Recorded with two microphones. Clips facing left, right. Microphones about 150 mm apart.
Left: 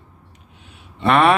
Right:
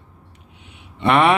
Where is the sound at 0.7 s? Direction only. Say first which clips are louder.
Even; 20° right (ahead or behind).